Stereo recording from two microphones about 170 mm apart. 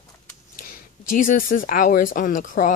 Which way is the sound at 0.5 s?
55° left (ahead or behind).